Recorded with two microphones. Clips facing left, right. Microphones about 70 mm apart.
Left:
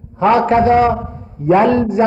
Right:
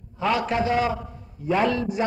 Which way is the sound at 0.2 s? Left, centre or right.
Left.